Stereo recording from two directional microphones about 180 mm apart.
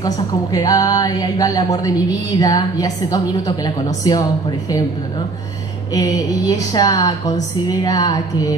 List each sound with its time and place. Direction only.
0.0 s speech: 20° left (ahead or behind)
5.9 s speech: 20° left (ahead or behind)